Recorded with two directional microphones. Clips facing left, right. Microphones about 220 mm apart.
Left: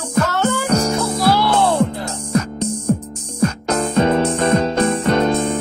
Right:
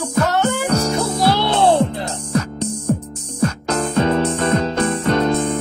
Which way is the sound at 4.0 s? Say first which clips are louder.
Left 2 dB; 15° left (ahead or behind).